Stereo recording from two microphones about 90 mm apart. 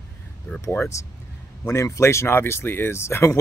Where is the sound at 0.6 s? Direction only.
30° left (ahead or behind).